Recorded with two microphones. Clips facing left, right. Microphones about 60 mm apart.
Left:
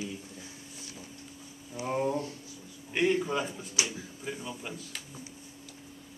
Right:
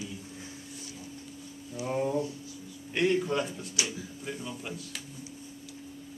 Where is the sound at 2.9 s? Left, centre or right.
Centre.